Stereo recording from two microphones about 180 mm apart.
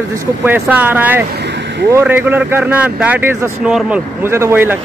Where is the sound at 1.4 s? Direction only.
70° right (ahead or behind).